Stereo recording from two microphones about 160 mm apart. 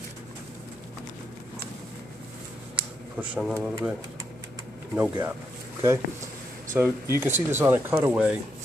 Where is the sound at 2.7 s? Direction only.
5° right (ahead or behind).